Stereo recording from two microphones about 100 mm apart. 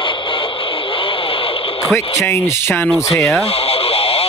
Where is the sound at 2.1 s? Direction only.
30° left (ahead or behind).